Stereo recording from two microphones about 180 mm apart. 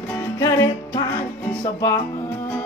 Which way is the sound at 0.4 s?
20° left (ahead or behind).